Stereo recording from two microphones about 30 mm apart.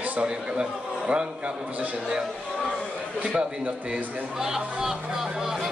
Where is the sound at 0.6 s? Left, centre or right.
Right.